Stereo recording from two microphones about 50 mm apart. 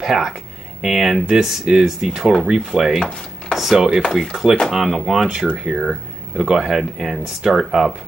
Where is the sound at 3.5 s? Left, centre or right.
Centre.